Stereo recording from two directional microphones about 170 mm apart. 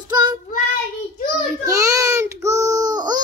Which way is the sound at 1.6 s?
20° right (ahead or behind).